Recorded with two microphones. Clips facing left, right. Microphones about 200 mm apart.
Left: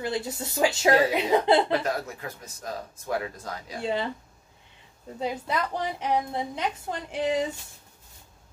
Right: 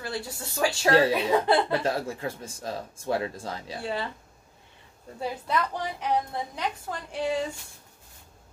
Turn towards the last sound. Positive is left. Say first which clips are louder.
# left 2 dB
turn(degrees=20)  # may be behind; listen again after turning